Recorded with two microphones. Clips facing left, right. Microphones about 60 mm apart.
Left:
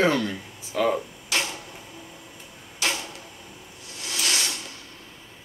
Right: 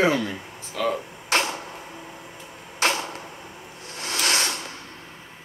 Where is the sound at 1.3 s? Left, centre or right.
Right.